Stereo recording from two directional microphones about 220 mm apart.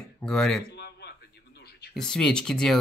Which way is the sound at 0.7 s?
50° left (ahead or behind).